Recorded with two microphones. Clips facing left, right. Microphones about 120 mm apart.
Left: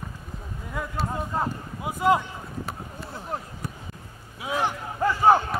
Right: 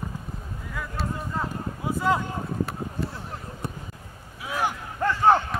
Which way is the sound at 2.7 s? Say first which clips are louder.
Right 5 dB; centre (ahead or behind).